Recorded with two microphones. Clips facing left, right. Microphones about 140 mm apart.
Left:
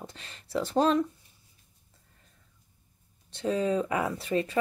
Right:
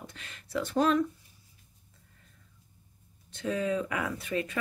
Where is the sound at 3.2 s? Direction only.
30° left (ahead or behind).